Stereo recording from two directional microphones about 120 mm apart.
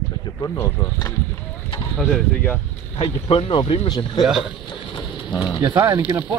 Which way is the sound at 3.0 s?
45° left (ahead or behind).